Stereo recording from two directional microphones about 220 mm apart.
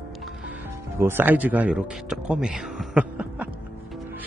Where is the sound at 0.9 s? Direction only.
10° right (ahead or behind).